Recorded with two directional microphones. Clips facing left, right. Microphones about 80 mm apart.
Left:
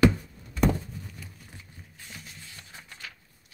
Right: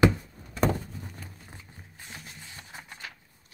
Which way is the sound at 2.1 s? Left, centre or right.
Right.